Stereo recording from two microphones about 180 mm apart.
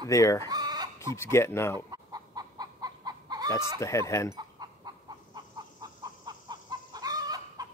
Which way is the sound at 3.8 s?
15° left (ahead or behind).